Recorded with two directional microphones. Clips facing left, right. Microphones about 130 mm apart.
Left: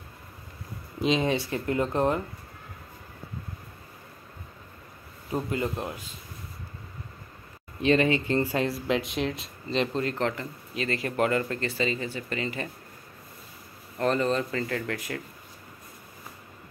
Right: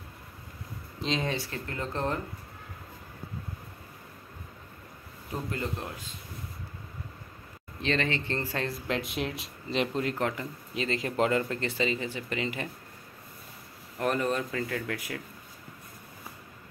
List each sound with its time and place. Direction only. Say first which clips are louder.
1.0 s speech: left 6 dB; 15° left (ahead or behind)
5.3 s speech: left 5 dB; 10° left (ahead or behind)
7.8 s speech: left 7 dB; 10° left (ahead or behind)
8.8 s speech: left 4 dB; centre (ahead or behind)
13.9 s speech: left 3 dB; 10° right (ahead or behind)